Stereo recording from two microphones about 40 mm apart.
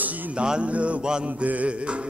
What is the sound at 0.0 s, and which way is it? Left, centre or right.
Music, right.